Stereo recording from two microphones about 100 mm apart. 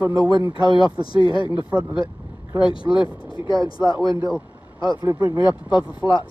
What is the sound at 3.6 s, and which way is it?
Speech, 40° right (ahead or behind).